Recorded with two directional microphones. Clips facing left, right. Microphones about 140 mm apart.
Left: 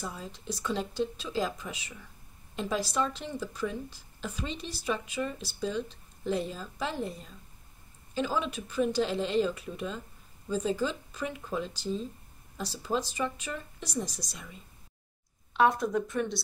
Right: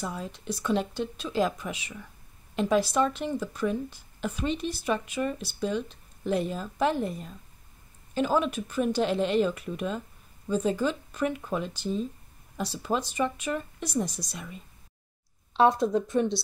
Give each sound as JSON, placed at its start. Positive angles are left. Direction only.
{"t": 0.0, "sound": "speech", "side_deg": -60}
{"t": 15.5, "sound": "speech", "side_deg": -30}